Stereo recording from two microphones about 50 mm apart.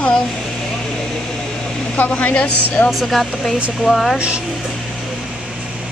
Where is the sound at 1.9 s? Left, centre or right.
Left.